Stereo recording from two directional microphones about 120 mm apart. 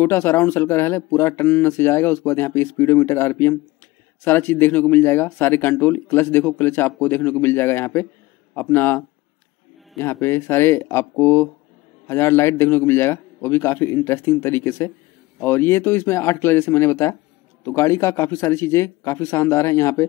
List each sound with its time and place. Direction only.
0.0 s speech: 20° left (ahead or behind)